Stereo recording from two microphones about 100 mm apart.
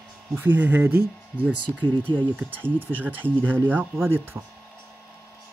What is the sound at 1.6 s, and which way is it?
Speech, 50° right (ahead or behind).